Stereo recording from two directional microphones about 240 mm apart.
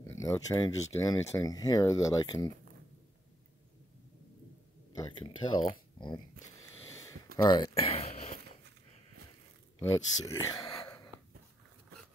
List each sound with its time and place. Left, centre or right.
0.0 s speech: centre
4.9 s speech: centre
7.4 s a sound: centre
9.8 s speech: centre
10.2 s speech: left
10.5 s whispering: centre